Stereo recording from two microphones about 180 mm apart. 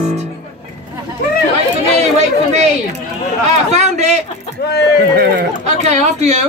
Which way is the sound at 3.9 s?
40° right (ahead or behind).